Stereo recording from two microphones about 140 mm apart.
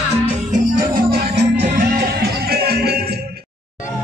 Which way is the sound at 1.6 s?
80° right.